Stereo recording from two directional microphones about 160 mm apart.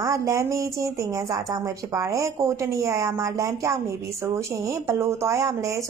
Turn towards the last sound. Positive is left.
turn(degrees=-20)  # may be behind; listen again after turning